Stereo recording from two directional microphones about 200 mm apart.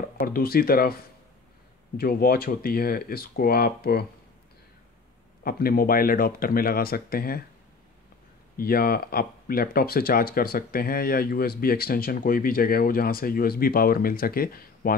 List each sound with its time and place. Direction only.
0.2 s speech: 50° left (ahead or behind)
2.0 s speech: 50° left (ahead or behind)
5.4 s speech: 45° left (ahead or behind)
8.5 s speech: 50° left (ahead or behind)